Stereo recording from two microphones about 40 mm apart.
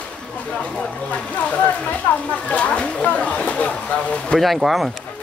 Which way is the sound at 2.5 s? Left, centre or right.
Left.